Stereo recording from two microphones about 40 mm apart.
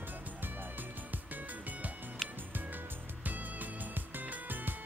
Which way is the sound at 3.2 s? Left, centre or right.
Right.